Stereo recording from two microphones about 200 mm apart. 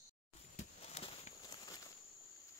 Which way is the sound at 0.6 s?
30° left (ahead or behind).